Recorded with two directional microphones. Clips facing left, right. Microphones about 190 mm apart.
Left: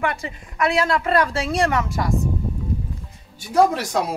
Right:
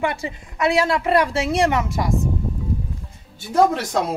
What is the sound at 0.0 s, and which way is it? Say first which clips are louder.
A woman's voice: right 1 dB; 25° right (ahead or behind).